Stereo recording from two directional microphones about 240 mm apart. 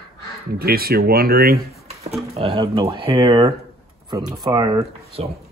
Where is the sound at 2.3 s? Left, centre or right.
Right.